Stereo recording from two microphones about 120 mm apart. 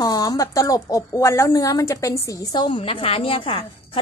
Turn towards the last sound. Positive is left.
turn(degrees=50)  # may be behind; listen again after turning